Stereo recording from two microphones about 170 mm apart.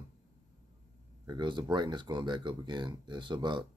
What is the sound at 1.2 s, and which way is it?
Speech, 25° right (ahead or behind).